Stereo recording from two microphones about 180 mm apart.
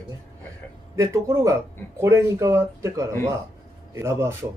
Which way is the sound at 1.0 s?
15° right (ahead or behind).